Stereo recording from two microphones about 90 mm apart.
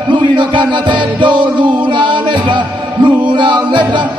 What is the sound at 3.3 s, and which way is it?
Music, 60° right (ahead or behind).